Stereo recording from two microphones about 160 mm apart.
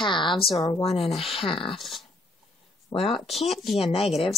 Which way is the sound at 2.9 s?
35° left (ahead or behind).